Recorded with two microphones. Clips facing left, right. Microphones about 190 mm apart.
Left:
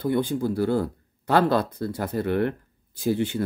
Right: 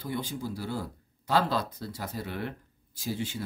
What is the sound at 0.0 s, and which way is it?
Speech, 60° left (ahead or behind).